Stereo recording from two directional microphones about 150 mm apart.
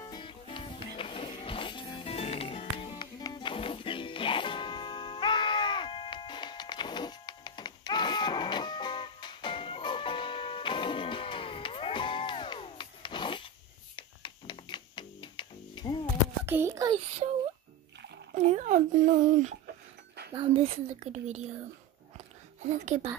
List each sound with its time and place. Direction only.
0.0 s music: 30° left (ahead or behind)
16.4 s a child's voice: 15° right (ahead or behind)
18.3 s speech: 50° right (ahead or behind)
20.3 s a woman's voice: 40° right (ahead or behind)
22.6 s a woman's voice: 55° right (ahead or behind)